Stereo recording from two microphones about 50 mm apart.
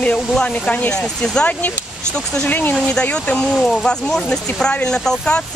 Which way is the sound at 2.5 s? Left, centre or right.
Left.